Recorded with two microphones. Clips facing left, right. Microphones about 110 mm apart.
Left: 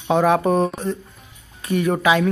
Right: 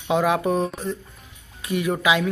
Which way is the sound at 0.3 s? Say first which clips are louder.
Left 4 dB; 40° left (ahead or behind).